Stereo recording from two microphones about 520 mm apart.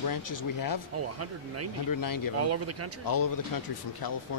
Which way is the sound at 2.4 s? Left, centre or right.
Right.